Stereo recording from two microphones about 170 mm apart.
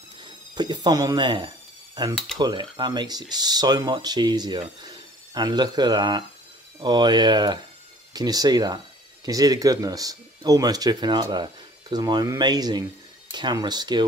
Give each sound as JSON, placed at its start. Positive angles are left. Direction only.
{"t": 0.2, "sound": "speech", "side_deg": -25}